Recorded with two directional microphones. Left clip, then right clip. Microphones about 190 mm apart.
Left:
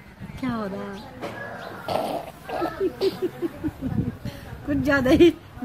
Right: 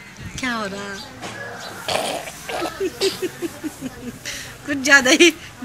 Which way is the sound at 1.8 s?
5° right (ahead or behind).